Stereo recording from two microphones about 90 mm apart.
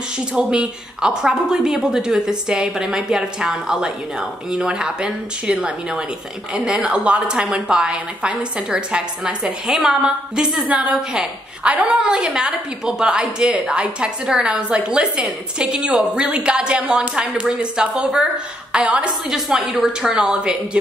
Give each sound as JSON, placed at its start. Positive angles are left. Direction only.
{"t": 0.3, "sound": "a woman's voice", "side_deg": -10}